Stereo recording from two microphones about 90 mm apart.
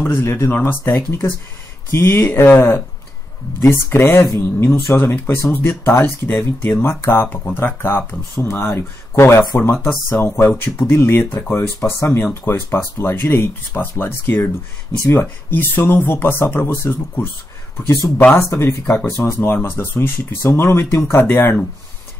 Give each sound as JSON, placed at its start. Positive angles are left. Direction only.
{"t": 0.1, "sound": "speech", "side_deg": 25}